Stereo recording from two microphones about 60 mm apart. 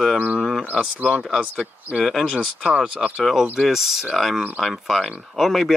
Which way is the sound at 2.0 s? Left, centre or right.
Centre.